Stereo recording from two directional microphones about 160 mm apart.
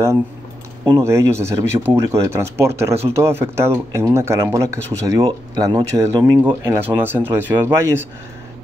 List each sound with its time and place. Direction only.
0.8 s speech: 15° right (ahead or behind)